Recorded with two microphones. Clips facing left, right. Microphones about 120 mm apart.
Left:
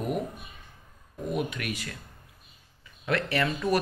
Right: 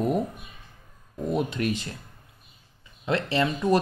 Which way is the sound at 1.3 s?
30° right (ahead or behind).